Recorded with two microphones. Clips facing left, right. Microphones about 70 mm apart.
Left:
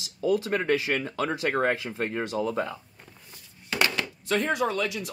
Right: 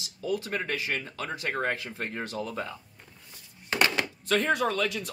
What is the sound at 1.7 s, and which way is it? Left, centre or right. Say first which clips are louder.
Speech: left 4 dB; centre.